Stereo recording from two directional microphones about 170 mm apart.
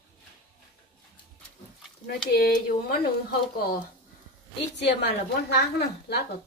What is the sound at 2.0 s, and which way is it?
Speech, 65° left (ahead or behind).